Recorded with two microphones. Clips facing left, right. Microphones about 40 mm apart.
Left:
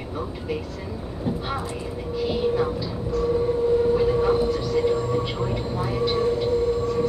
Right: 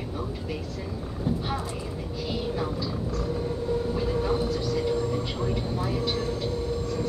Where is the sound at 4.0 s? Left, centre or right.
Centre.